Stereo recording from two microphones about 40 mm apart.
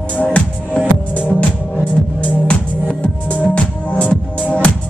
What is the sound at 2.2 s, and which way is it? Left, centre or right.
Music, left.